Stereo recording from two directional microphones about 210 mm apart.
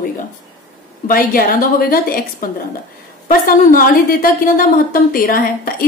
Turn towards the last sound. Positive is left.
turn(degrees=45)  # may be behind; listen again after turning